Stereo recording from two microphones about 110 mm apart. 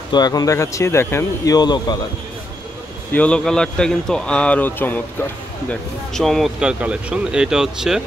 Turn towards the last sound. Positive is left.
turn(degrees=-5)  # may be behind; listen again after turning